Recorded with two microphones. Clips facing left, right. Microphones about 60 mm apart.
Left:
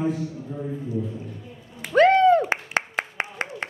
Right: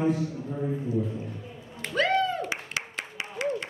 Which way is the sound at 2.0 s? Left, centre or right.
Left.